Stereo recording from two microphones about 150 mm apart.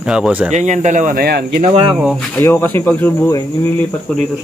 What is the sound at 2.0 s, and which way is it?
Speech, 5° right (ahead or behind).